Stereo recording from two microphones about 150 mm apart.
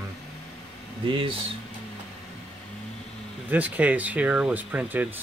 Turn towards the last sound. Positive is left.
turn(degrees=-10)  # may be behind; listen again after turning